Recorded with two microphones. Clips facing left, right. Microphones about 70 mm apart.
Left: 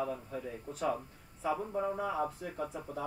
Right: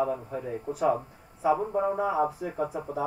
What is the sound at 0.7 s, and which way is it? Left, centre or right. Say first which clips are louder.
Speech: right 8 dB; centre.